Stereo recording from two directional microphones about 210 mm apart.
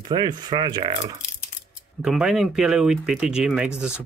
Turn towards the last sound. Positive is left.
turn(degrees=-5)  # may be behind; listen again after turning